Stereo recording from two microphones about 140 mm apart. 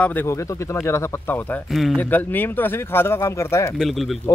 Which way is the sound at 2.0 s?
10° left (ahead or behind).